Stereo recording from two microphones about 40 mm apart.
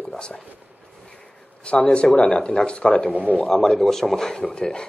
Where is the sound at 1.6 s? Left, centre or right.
Left.